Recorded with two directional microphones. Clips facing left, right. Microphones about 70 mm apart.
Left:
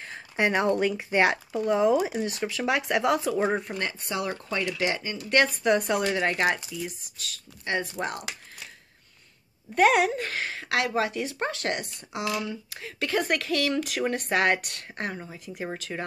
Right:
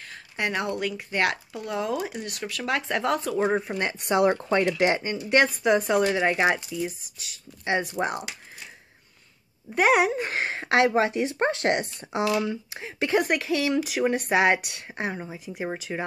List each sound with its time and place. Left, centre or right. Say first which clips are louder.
0.0 s a sound: left 4 dB; left
0.7 s speech: left 3 dB; centre
1.5 s speech: left 7 dB; left
1.8 s speech: left 4 dB; centre
2.2 s speech: left 3 dB; left; by 3.7 s centre
4.1 s speech: right 12 dB; right
5.1 s speech: right 2 dB; centre
5.8 s speech: right 4 dB; centre
6.0 s speech: right 3 dB; centre
9.8 s speech: even; centre
10.2 s speech: right 4 dB; right